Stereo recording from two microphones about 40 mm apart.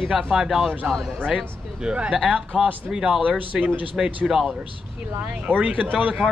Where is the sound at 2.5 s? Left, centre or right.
Centre.